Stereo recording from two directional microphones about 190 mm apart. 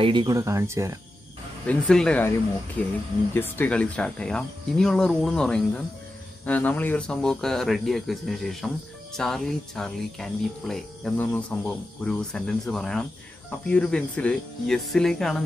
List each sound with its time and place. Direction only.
0.0 s speech: 25° right (ahead or behind)
1.7 s speech: 5° left (ahead or behind)